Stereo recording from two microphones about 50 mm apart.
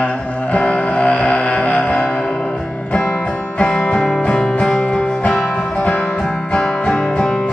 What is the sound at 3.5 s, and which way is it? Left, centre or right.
Music, left.